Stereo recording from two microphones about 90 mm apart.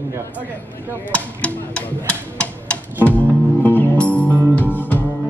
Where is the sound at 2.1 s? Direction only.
15° left (ahead or behind).